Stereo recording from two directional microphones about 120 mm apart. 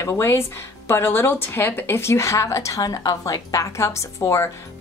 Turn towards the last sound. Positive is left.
turn(degrees=25)  # may be behind; listen again after turning